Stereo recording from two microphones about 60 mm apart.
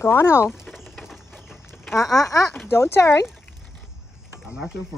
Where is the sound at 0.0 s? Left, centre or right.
Left.